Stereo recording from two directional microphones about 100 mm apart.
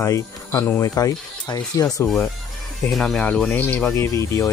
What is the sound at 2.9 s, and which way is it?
Speech, 5° left (ahead or behind).